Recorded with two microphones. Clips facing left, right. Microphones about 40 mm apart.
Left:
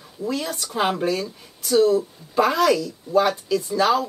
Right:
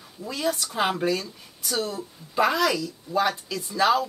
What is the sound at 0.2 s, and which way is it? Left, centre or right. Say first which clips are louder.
A woman's voice: left 1 dB; centre.